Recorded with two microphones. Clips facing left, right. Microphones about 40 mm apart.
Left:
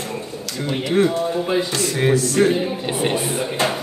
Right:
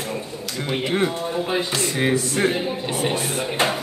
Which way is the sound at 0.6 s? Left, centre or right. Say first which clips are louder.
Left 3 dB; centre.